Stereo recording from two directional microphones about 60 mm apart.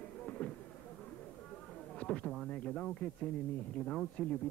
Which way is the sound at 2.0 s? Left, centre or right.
Centre.